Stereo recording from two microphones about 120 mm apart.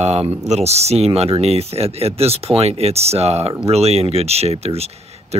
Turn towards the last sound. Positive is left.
turn(degrees=-60)  # may be behind; listen again after turning